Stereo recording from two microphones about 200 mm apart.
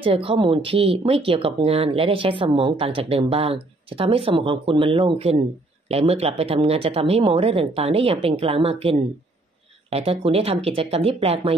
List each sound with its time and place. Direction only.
0.0 s speech: 25° right (ahead or behind)